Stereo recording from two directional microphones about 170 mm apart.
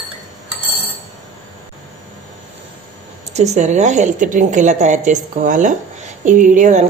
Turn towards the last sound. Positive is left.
turn(degrees=-45)  # may be behind; listen again after turning